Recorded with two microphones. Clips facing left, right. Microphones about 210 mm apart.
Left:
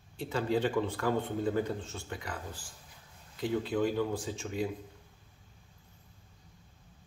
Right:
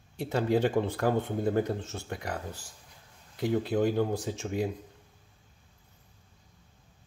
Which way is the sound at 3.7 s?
40° right (ahead or behind).